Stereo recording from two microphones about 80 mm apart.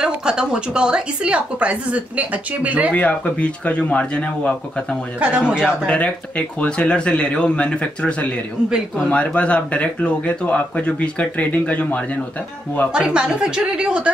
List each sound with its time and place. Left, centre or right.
0.0 s a woman's voice: centre
2.9 s speech: centre
5.2 s a woman's voice: centre
5.9 s speech: centre
12.9 s a woman's voice: centre